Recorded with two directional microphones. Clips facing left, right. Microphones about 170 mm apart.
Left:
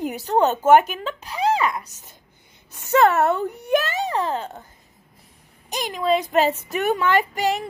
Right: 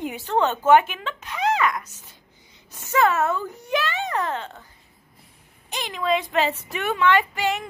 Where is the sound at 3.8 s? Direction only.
40° left (ahead or behind).